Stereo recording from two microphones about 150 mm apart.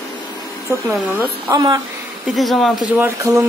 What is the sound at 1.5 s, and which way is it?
Speech, 25° right (ahead or behind).